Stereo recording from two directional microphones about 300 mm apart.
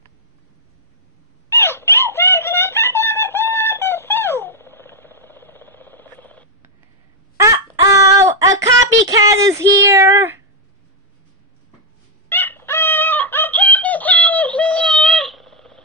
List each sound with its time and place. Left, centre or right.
1.5 s wail: centre
7.3 s a sound: centre
12.3 s fowl: centre